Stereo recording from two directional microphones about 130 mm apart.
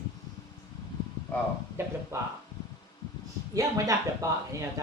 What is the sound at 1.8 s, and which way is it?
Speech, 20° right (ahead or behind).